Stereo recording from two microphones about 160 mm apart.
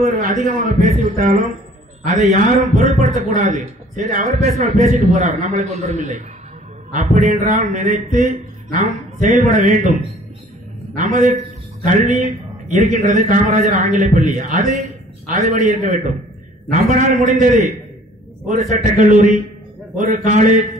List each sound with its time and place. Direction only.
0.0 s a man's voice: 50° right (ahead or behind)
2.4 s a man's voice: 50° right (ahead or behind)
11.0 s a man's voice: 45° right (ahead or behind)